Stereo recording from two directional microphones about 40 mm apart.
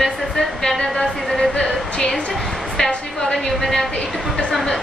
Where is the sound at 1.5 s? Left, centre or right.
Left.